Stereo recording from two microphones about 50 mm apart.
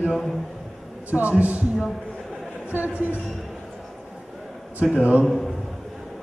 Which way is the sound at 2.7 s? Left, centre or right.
Right.